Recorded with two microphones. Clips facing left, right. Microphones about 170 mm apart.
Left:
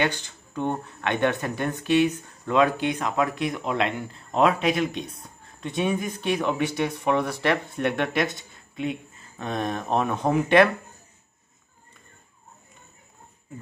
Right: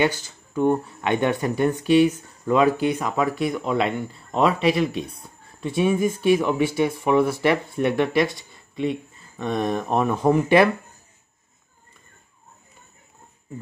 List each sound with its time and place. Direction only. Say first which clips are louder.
0.0 s speech: right 4 dB; 5° right (ahead or behind)